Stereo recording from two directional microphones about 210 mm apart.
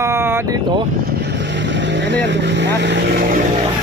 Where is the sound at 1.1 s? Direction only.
55° right (ahead or behind).